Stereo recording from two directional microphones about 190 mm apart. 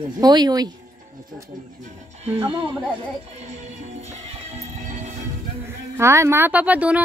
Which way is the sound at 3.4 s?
35° right (ahead or behind).